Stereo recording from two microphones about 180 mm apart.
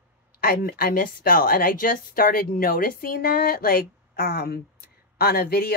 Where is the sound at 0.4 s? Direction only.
55° left (ahead or behind).